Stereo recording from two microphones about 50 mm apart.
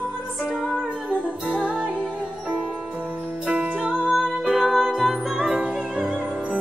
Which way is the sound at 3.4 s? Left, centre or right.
Centre.